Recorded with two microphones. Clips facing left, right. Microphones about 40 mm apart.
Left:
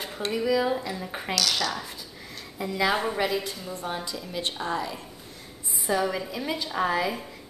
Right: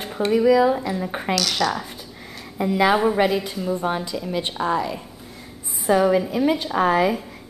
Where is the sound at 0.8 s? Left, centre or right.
Centre.